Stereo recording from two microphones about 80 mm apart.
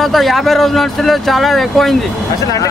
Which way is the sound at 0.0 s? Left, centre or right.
Centre.